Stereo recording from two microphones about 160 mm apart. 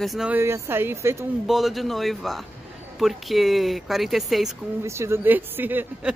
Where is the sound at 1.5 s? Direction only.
Centre (ahead or behind).